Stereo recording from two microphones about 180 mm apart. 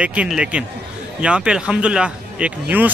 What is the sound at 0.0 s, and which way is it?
Speech, 5° right (ahead or behind).